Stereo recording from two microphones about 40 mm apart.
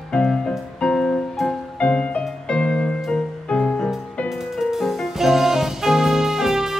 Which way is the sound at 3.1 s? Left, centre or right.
Left.